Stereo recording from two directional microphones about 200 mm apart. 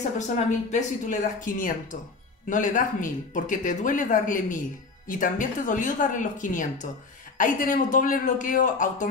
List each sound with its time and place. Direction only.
0.5 s speech: 40° left (ahead or behind)